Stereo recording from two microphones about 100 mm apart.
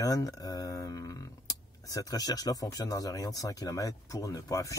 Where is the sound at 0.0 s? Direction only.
40° left (ahead or behind).